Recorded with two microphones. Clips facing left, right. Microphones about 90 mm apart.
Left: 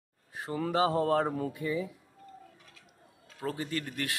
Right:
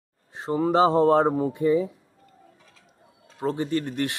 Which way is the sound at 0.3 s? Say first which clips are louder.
Right 9 dB; 25° right (ahead or behind).